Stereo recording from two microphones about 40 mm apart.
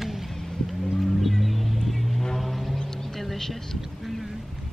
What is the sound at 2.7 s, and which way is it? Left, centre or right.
Music, centre.